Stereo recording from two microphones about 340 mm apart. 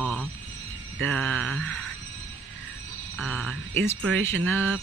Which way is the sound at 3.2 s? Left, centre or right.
Centre.